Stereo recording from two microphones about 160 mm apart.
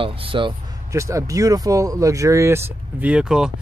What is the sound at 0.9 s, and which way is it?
Speech, 20° right (ahead or behind).